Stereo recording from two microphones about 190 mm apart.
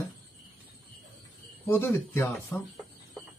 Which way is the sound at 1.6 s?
15° left (ahead or behind).